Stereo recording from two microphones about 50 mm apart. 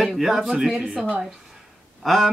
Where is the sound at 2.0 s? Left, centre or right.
Centre.